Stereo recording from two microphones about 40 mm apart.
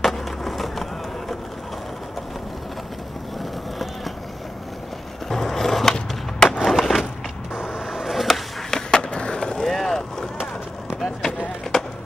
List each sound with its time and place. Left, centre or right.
0.0 s skateboard: centre
5.3 s skateboard: centre
6.6 s skateboard: centre
7.5 s a sound: centre
8.6 s skateboard: centre
9.7 s boat: centre
11.7 s skateboard: centre